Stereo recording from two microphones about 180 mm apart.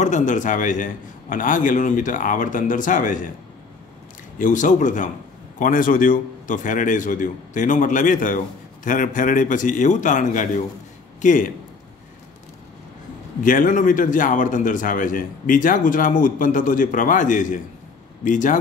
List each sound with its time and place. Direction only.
0.0 s a man's voice: 45° left (ahead or behind)
4.4 s a man's voice: 45° left (ahead or behind)
13.4 s a man's voice: 45° left (ahead or behind)